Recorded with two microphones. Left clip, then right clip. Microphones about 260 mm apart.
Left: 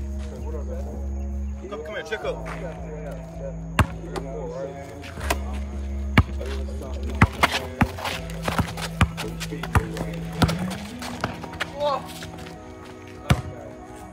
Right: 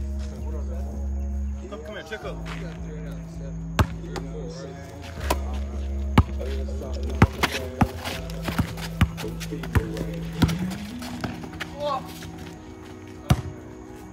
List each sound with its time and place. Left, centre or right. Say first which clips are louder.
1.7 s speech: left 5 dB; centre
3.7 s basketball bounce: left 2 dB; left
6.2 s music: left 2 dB; centre
7.2 s walk: left 3 dB; centre
8.9 s a sound: left 3 dB; centre
9.7 s clip-clop: left 3 dB; centre
11.0 s horse: left 5 dB; centre
13.3 s basketball bounce: left 2 dB; centre